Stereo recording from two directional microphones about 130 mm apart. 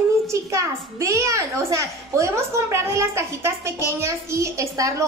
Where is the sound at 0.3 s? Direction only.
25° right (ahead or behind).